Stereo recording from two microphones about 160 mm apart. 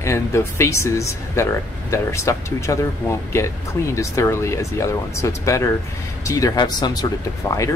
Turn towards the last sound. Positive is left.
turn(degrees=20)  # may be behind; listen again after turning